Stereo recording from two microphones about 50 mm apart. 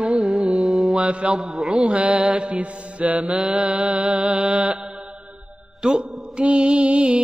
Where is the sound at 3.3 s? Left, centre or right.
Centre.